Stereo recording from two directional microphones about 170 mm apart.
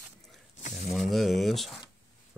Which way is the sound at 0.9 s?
Centre (ahead or behind).